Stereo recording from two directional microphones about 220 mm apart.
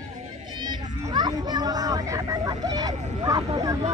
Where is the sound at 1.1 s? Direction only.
20° right (ahead or behind).